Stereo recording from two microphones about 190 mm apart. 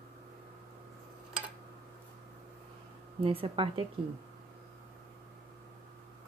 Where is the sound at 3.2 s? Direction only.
30° right (ahead or behind).